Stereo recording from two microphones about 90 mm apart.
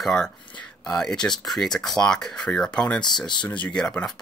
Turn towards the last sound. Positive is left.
turn(degrees=10)  # may be behind; listen again after turning